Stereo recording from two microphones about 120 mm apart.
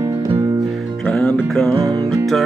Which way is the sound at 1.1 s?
5° left (ahead or behind).